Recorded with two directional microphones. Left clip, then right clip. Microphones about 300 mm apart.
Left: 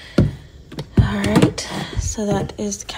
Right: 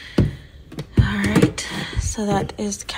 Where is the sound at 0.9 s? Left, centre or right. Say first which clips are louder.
Left 2 dB; centre.